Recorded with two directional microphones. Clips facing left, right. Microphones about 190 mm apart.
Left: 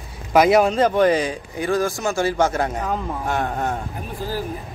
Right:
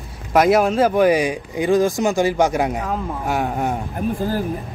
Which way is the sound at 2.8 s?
Centre (ahead or behind).